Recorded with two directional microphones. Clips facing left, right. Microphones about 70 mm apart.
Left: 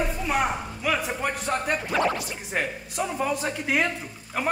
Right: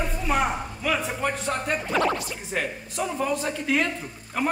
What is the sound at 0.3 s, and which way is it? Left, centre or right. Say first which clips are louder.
Speech: right 3 dB; centre.